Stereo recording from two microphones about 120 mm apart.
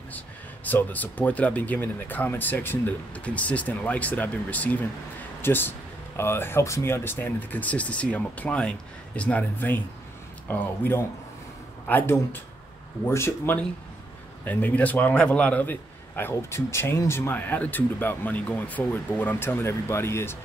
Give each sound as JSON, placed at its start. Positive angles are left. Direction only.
{"t": 0.7, "sound": "a man's voice", "side_deg": 15}